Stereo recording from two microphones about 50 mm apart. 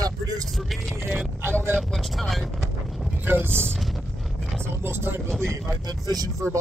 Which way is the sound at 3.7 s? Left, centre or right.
Centre.